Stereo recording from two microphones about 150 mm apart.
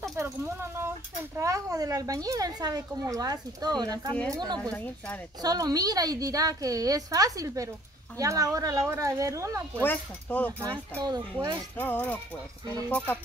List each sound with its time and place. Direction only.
0.1 s a sound: 20° right (ahead or behind)
1.3 s speech: 20° right (ahead or behind)
4.6 s speech: 5° left (ahead or behind)
5.4 s speech: 25° right (ahead or behind)
9.8 s speech: 10° left (ahead or behind)
11.0 s speech: 25° right (ahead or behind)
11.7 s speech: 15° left (ahead or behind)